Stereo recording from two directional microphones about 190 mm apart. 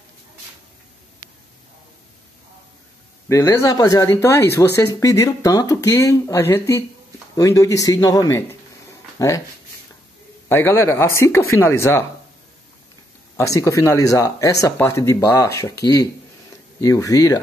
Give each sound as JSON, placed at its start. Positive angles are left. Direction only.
{"t": 3.3, "sound": "speech", "side_deg": 15}
{"t": 10.5, "sound": "speech", "side_deg": 10}
{"t": 13.4, "sound": "speech", "side_deg": 15}